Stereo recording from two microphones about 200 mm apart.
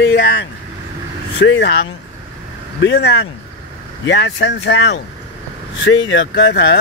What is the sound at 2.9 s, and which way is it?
Speech, 55° left (ahead or behind).